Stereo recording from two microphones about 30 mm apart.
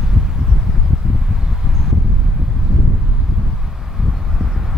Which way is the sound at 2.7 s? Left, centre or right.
Centre.